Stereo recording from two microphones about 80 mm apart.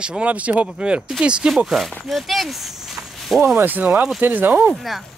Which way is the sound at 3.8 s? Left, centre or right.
Centre.